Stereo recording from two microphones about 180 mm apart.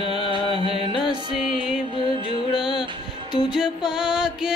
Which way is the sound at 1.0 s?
5° right (ahead or behind).